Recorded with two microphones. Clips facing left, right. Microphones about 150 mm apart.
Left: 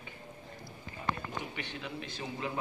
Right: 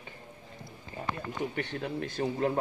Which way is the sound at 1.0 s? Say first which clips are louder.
Even; 40° right (ahead or behind).